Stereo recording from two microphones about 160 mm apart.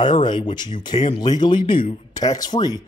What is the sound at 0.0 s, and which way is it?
Speech, 30° left (ahead or behind).